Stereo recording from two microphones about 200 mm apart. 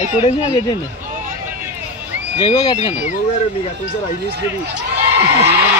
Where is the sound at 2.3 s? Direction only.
20° left (ahead or behind).